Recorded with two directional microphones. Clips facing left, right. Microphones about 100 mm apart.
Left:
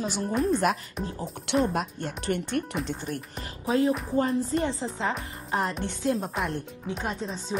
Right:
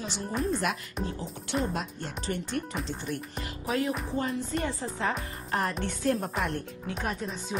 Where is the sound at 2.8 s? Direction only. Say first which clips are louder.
Left 2 dB; 45° left (ahead or behind).